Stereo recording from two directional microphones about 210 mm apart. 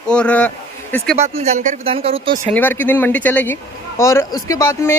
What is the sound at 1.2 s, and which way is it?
Speech, 30° right (ahead or behind).